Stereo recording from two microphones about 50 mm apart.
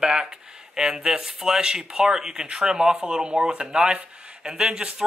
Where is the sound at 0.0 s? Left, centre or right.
Centre.